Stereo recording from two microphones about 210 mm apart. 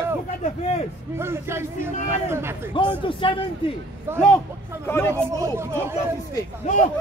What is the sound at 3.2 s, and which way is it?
Speech, 25° left (ahead or behind).